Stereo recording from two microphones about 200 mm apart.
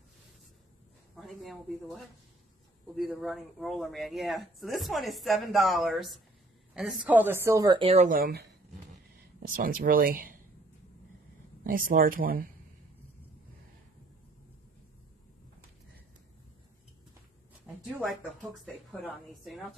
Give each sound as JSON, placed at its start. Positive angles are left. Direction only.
{"t": 1.1, "sound": "speech", "side_deg": 0}
{"t": 11.6, "sound": "speech", "side_deg": -45}
{"t": 17.9, "sound": "speech", "side_deg": 0}